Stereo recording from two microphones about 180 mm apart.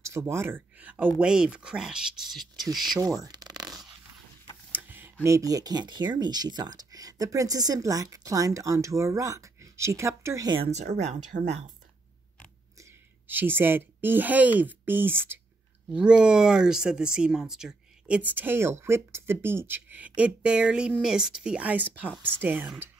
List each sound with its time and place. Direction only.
0.0 s speech: 15° right (ahead or behind)
3.0 s a sound: 20° right (ahead or behind)
4.7 s speech: 10° right (ahead or behind)
10.6 s speech: 40° right (ahead or behind)
13.3 s speech: 10° right (ahead or behind)